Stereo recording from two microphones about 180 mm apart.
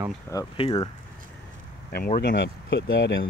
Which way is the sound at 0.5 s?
25° left (ahead or behind).